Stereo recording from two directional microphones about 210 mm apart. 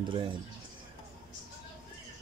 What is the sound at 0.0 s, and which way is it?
Speech, 25° right (ahead or behind).